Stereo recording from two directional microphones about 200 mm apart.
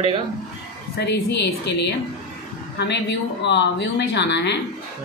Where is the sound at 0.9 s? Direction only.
55° left (ahead or behind).